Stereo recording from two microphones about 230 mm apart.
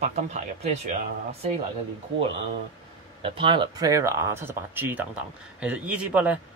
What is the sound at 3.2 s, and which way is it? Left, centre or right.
Speech, right.